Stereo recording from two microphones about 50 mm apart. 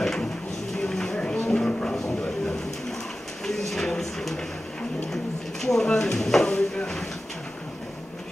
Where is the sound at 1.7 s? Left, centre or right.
Left.